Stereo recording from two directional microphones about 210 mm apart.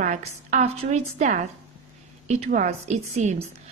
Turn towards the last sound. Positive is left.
turn(degrees=-35)  # may be behind; listen again after turning